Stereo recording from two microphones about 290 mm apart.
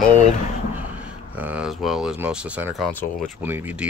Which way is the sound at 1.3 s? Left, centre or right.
Centre.